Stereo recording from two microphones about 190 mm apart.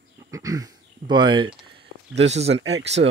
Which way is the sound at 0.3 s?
15° right (ahead or behind).